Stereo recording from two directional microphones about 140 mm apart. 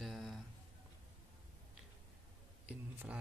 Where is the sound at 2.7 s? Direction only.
10° right (ahead or behind).